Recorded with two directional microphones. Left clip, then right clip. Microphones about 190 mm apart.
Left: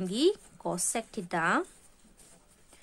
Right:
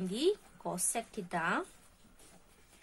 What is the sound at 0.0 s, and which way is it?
Speech, 45° left (ahead or behind).